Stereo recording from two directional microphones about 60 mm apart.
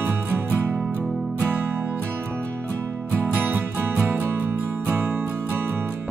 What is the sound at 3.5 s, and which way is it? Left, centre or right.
Music, right.